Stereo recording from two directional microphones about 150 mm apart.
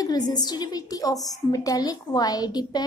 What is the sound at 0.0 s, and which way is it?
A woman's voice, 25° left (ahead or behind).